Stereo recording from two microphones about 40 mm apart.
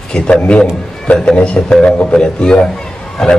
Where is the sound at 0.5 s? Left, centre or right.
Left.